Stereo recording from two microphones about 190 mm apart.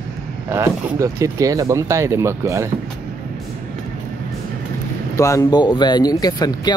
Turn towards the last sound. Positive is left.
turn(degrees=20)  # may be behind; listen again after turning